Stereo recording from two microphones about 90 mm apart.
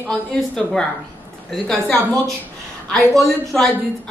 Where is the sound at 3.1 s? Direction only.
5° left (ahead or behind).